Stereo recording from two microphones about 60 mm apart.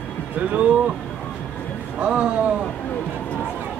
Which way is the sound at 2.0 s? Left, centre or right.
Centre.